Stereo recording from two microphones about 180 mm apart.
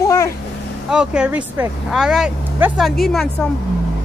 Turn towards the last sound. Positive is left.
turn(degrees=0)  # may be behind; listen again after turning